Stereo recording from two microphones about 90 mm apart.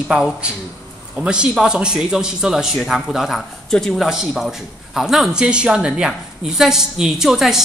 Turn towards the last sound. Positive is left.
turn(degrees=-5)  # may be behind; listen again after turning